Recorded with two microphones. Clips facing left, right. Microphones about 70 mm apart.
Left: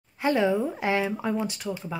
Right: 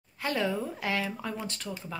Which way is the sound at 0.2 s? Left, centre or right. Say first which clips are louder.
Left 7 dB; left.